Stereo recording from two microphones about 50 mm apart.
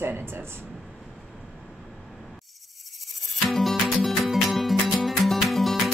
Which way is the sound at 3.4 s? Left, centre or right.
Centre.